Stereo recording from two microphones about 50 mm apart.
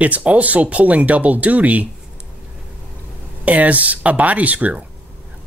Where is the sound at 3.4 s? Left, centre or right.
Right.